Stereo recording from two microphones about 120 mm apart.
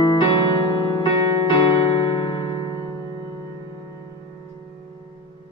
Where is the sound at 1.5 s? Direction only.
40° left (ahead or behind).